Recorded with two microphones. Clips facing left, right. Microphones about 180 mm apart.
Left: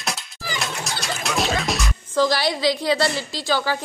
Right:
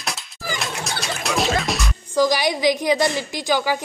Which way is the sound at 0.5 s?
Centre (ahead or behind).